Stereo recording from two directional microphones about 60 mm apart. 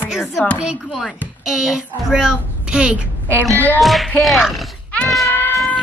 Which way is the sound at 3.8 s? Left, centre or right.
Centre.